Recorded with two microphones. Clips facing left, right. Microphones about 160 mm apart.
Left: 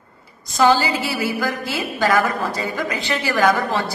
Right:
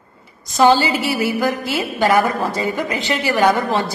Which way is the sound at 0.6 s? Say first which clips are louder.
Right 3 dB; 20° right (ahead or behind).